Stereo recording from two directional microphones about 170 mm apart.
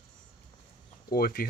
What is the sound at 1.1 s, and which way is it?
Speech, 60° left (ahead or behind).